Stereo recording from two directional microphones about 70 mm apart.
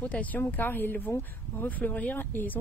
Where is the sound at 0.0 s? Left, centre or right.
Left.